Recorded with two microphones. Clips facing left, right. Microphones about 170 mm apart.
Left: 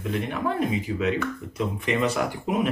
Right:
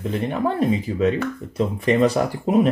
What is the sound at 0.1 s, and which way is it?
Speech, 35° right (ahead or behind).